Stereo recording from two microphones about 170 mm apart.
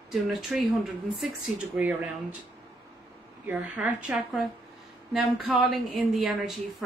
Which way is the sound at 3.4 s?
10° right (ahead or behind).